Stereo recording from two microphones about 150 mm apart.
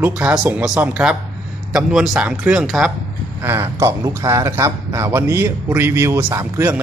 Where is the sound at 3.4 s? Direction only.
20° right (ahead or behind).